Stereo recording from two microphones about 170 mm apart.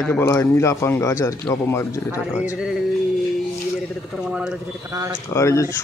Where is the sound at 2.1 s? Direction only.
5° right (ahead or behind).